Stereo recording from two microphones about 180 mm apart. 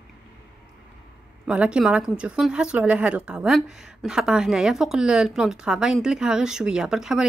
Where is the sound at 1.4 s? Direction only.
5° right (ahead or behind).